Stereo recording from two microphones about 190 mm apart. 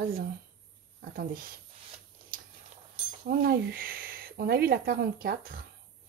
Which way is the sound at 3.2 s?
50° right (ahead or behind).